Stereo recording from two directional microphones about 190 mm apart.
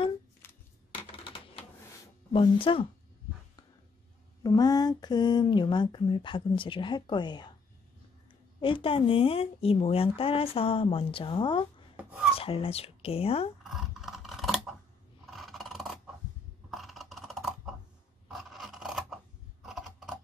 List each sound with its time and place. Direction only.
0.4 s a sound: 15° left (ahead or behind)
1.2 s typewriter: 25° left (ahead or behind)
2.3 s speech: 25° left (ahead or behind)
4.4 s speech: 20° left (ahead or behind)
8.5 s speech: 25° left (ahead or behind)
12.0 s chopping: 5° right (ahead or behind)
12.4 s speech: 30° left (ahead or behind)
13.7 s scissors: centre (ahead or behind)
15.3 s a sound: centre (ahead or behind)
18.3 s filing: centre (ahead or behind)
19.6 s typing: centre (ahead or behind)